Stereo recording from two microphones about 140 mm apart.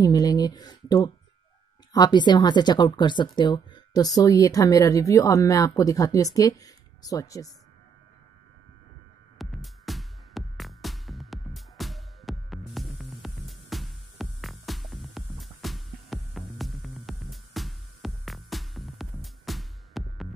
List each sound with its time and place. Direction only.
0.0 s speech: 25° left (ahead or behind)
9.4 s music: centre (ahead or behind)